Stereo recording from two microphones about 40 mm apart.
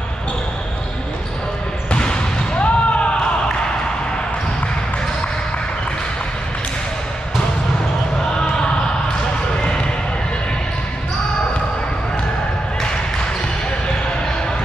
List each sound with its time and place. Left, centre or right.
1.9 s basketball bounce: left